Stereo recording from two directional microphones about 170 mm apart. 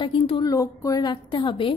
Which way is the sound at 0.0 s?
30° left (ahead or behind).